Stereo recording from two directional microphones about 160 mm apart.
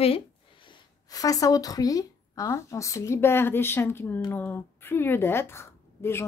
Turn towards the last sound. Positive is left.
turn(degrees=15)  # may be behind; listen again after turning